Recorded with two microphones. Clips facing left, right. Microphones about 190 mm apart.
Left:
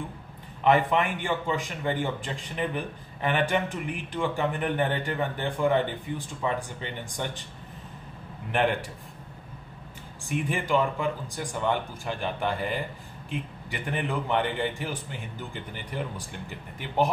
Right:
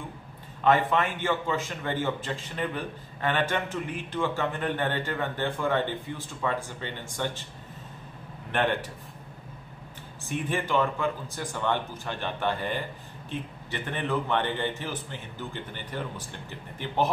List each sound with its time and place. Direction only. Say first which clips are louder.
0.7 s a man's voice: left 1 dB; 15° left (ahead or behind)
10.2 s a man's voice: left 1 dB; 15° left (ahead or behind)